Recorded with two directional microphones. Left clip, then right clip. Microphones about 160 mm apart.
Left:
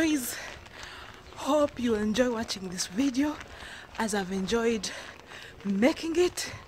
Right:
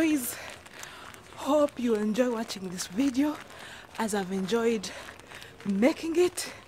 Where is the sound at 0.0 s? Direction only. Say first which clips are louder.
Even; centre (ahead or behind).